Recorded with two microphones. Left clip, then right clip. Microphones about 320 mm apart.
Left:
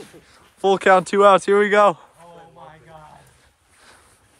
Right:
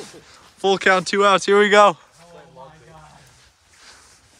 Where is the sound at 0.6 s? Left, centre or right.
Centre.